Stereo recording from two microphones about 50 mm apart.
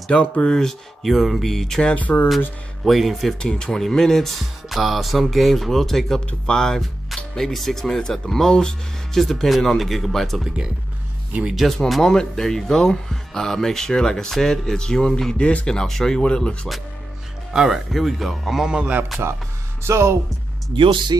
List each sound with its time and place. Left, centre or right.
0.1 s speech: left; by 1.9 s centre
2.1 s speech: left
2.8 s speech: centre
3.3 s speech: centre
4.4 s speech: centre
11.5 s speech: centre
12.0 s speech: centre
17.5 s speech: centre
19.8 s speech: right